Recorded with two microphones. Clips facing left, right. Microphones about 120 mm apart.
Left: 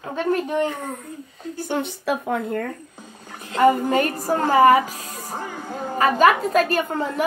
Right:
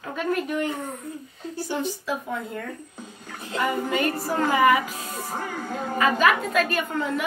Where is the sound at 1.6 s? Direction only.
60° left (ahead or behind).